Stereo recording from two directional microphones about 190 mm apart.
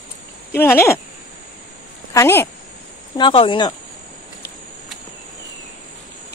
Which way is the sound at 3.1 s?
25° left (ahead or behind).